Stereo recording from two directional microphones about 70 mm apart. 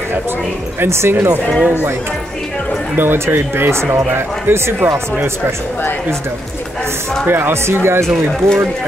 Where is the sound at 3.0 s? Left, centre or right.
Right.